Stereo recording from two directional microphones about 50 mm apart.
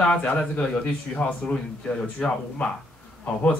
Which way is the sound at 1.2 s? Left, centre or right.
Left.